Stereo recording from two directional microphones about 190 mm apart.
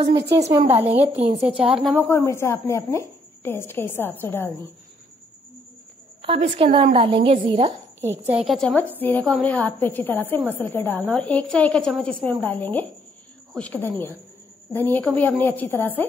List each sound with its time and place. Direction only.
0.5 s speech: 30° right (ahead or behind)
2.0 s a woman's voice: 15° left (ahead or behind)
6.2 s a woman's voice: 30° right (ahead or behind)
8.0 s a woman's voice: 10° right (ahead or behind); by 16.1 s 10° left (ahead or behind)